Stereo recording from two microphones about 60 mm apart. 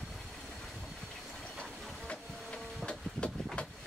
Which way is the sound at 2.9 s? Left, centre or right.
Centre.